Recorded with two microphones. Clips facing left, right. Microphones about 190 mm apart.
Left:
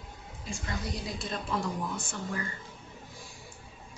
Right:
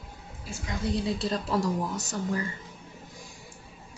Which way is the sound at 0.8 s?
30° right (ahead or behind).